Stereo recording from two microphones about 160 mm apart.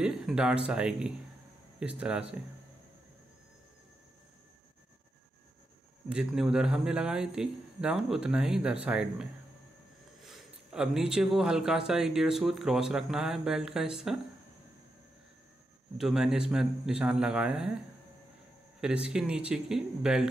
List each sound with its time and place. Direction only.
0.0 s speech: 5° right (ahead or behind)
6.0 s speech: 5° right (ahead or behind)
16.0 s speech: 5° right (ahead or behind)
18.8 s speech: 5° right (ahead or behind)